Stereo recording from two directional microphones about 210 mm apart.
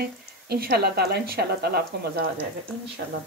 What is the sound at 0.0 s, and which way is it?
Speech, 45° right (ahead or behind).